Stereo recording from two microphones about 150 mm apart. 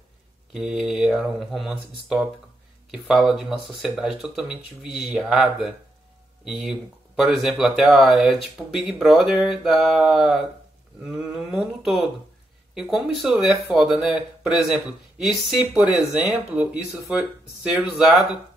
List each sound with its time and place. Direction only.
0.5 s speech: centre (ahead or behind)
17.7 s speech: 5° right (ahead or behind)